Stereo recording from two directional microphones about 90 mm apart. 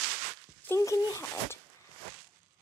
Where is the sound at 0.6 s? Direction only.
30° left (ahead or behind).